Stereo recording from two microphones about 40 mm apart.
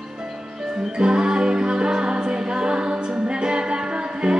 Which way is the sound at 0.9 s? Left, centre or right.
Right.